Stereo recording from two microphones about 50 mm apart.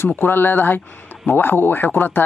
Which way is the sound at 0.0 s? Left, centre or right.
Left.